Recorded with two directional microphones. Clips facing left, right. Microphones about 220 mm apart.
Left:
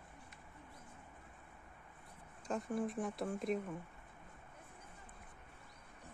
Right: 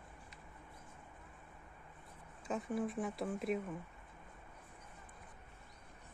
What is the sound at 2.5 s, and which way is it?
Speech, centre (ahead or behind).